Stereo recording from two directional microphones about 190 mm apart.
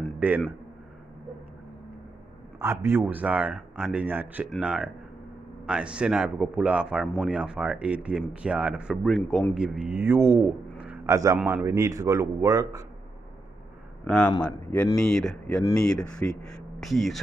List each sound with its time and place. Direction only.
0.2 s a man's voice: 10° right (ahead or behind)
2.6 s a man's voice: 15° right (ahead or behind)
14.0 s speech: 5° left (ahead or behind)